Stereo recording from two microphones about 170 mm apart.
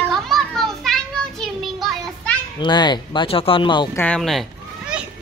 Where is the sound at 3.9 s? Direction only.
5° left (ahead or behind).